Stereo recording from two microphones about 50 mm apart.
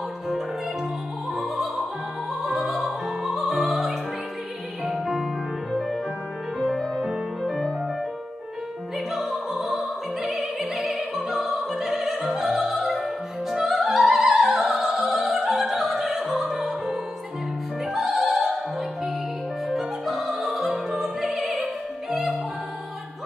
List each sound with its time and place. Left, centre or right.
1.3 s opera: centre
4.8 s music: centre
6.6 s music: centre
8.9 s music: centre
18.2 s opera: centre
19.7 s music: centre